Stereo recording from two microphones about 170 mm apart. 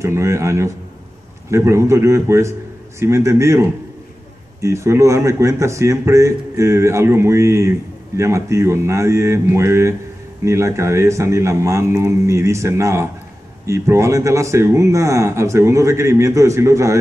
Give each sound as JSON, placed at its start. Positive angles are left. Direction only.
{"t": 0.0, "sound": "speech", "side_deg": -15}